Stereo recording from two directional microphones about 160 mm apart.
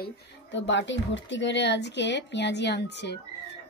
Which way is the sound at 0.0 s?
90° left.